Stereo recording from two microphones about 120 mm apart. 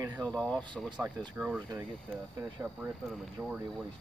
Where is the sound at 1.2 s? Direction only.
10° right (ahead or behind).